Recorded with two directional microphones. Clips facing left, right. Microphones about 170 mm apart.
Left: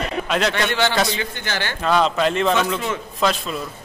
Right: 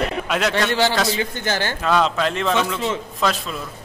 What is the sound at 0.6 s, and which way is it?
A man's voice, 35° right (ahead or behind).